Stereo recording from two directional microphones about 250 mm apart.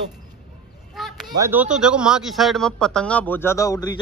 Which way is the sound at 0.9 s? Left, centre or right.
Centre.